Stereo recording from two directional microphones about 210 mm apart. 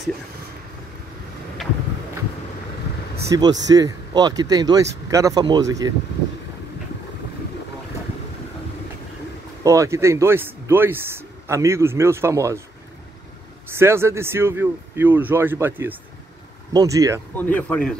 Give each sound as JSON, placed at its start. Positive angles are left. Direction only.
{"t": 3.3, "sound": "speech", "side_deg": -20}
{"t": 9.6, "sound": "speech", "side_deg": -15}
{"t": 13.7, "sound": "speech", "side_deg": -10}
{"t": 17.4, "sound": "speech", "side_deg": 5}